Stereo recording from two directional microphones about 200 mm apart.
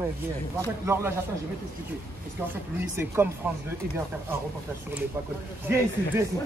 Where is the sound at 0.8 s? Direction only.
10° right (ahead or behind).